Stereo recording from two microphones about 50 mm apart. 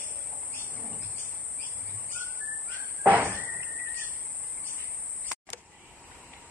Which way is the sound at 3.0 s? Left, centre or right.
Right.